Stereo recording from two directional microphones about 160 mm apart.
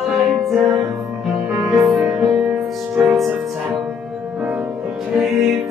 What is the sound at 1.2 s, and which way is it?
Music, 5° right (ahead or behind).